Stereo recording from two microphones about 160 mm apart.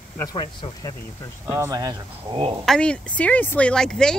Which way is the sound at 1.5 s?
20° right (ahead or behind).